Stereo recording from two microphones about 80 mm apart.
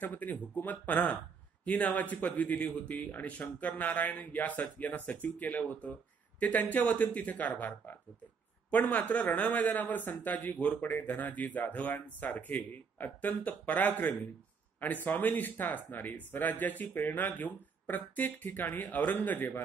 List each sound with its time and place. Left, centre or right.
0.0 s speech: left